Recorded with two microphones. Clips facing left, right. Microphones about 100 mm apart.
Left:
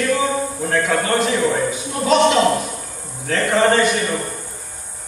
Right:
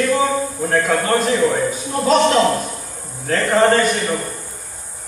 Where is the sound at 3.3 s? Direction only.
40° right (ahead or behind).